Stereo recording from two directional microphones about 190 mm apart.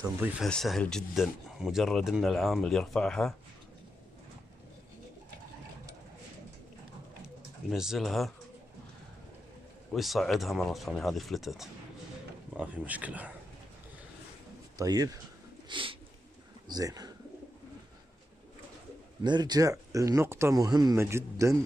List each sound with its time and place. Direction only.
0.2 s speech: centre (ahead or behind)
7.7 s speech: 5° right (ahead or behind)
9.9 s speech: centre (ahead or behind)
14.8 s speech: 20° right (ahead or behind)
15.7 s bird: 25° right (ahead or behind)
16.6 s speech: 20° right (ahead or behind)
19.2 s speech: 20° right (ahead or behind)